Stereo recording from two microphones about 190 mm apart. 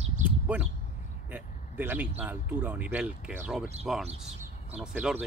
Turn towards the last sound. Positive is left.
turn(degrees=-5)  # may be behind; listen again after turning